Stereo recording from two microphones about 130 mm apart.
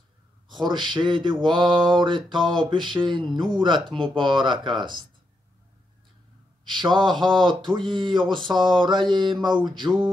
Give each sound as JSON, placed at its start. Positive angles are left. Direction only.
{"t": 0.7, "sound": "mantra", "side_deg": -35}
{"t": 6.7, "sound": "mantra", "side_deg": -35}